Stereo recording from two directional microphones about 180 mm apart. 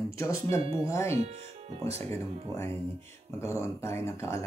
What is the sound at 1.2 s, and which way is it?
Speech, 40° right (ahead or behind).